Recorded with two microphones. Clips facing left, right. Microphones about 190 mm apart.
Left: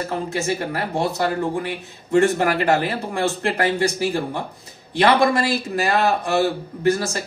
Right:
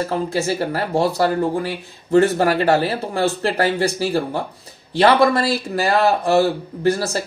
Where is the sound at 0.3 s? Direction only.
35° right (ahead or behind).